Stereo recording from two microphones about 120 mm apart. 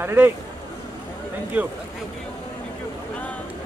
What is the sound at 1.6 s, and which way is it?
Speech, 10° right (ahead or behind).